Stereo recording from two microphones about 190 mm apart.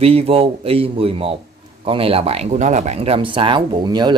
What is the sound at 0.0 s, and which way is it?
Speech, 30° right (ahead or behind).